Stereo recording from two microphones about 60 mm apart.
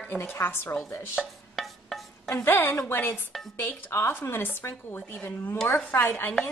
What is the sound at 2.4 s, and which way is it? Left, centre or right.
A woman's voice, left.